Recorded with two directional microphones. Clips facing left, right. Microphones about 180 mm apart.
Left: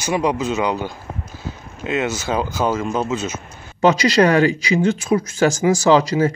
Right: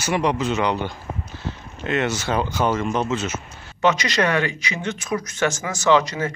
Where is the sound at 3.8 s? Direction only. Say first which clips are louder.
Left 6 dB; 35° left (ahead or behind).